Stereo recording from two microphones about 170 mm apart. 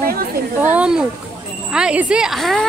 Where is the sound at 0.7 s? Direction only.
5° right (ahead or behind).